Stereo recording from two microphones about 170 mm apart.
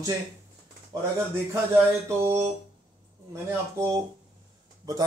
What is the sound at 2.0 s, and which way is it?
Speech, 15° right (ahead or behind).